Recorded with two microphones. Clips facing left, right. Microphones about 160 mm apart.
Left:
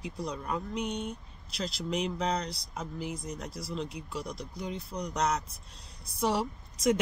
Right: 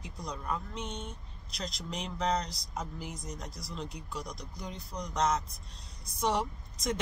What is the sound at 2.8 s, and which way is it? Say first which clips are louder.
A woman's voice: left 4 dB; centre (ahead or behind).